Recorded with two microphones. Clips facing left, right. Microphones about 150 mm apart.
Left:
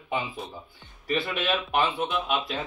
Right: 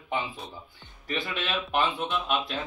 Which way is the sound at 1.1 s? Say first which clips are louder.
Left 5 dB; centre (ahead or behind).